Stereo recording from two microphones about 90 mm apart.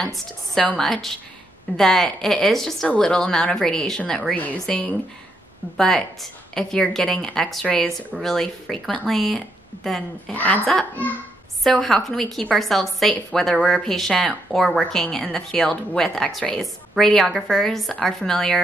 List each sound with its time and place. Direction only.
0.6 s a woman's voice: 15° left (ahead or behind)
10.3 s speech: 15° left (ahead or behind)
11.7 s a woman's voice: 5° left (ahead or behind)